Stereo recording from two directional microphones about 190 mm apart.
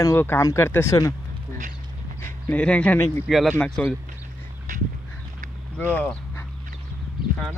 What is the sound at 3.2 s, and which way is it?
Speech, centre (ahead or behind).